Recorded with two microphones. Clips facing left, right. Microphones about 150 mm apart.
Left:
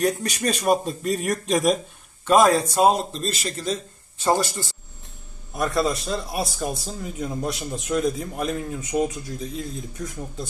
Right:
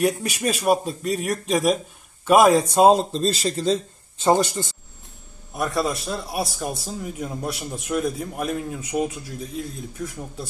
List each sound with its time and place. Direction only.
0.0 s speech: 5° right (ahead or behind)
2.2 s a man's voice: 10° right (ahead or behind)
2.7 s speech: 25° right (ahead or behind)
5.5 s a man's voice: 5° right (ahead or behind)